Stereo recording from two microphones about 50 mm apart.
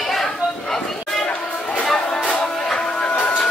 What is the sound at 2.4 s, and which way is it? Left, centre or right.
Music, centre.